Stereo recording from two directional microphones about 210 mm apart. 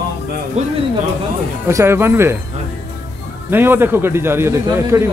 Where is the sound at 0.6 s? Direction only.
30° right (ahead or behind).